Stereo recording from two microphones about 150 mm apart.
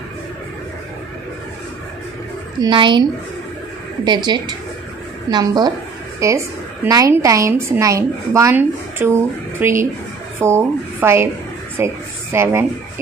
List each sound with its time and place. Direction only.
2.6 s a woman's voice: 30° right (ahead or behind); by 12.6 s 15° right (ahead or behind)